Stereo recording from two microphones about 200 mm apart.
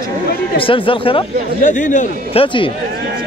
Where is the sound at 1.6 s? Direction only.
40° left (ahead or behind).